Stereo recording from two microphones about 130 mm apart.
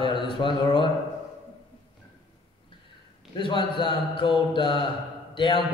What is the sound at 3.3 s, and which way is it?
A man's voice, 40° left (ahead or behind).